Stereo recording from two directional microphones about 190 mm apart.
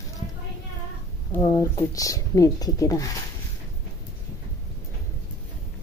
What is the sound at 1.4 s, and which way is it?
Speech, 15° left (ahead or behind).